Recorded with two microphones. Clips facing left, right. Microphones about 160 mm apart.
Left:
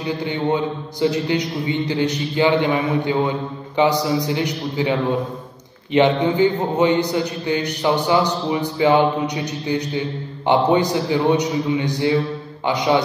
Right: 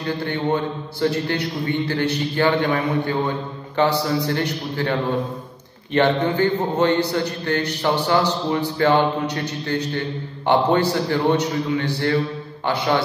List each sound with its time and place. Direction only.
0.0 s a man's voice: 15° left (ahead or behind)
5.9 s a man's voice: 15° left (ahead or behind)